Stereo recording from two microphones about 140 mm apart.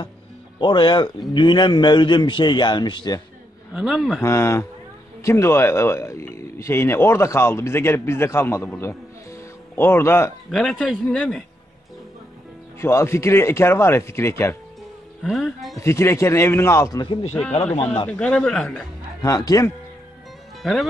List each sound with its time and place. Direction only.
0.6 s a man's voice: 35° left (ahead or behind)
3.7 s a man's voice: 5° right (ahead or behind)
4.2 s speech: 20° left (ahead or behind)
10.5 s a man's voice: 5° left (ahead or behind)
12.8 s speech: 20° left (ahead or behind)
15.2 s a man's voice: centre (ahead or behind)
15.8 s speech: 20° left (ahead or behind)
18.0 s speech: 10° left (ahead or behind)
19.2 s speech: 25° left (ahead or behind)